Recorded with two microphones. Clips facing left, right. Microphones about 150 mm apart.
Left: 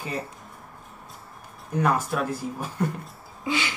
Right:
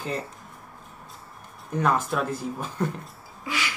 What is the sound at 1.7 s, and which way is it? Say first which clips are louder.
Speech: even; 5° left (ahead or behind).